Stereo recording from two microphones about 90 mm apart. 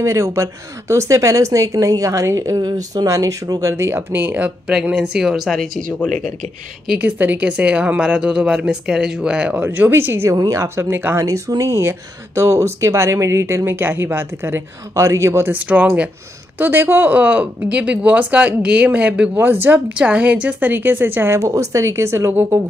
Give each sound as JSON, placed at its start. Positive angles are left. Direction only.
{"t": 0.0, "sound": "speech", "side_deg": -35}
{"t": 3.7, "sound": "speech", "side_deg": -30}
{"t": 4.8, "sound": "speech", "side_deg": -10}
{"t": 7.0, "sound": "speech", "side_deg": -15}
{"t": 10.3, "sound": "speech", "side_deg": -50}
{"t": 10.6, "sound": "speech", "side_deg": -25}
{"t": 11.2, "sound": "speech", "side_deg": -35}
{"t": 15.5, "sound": "speech", "side_deg": -15}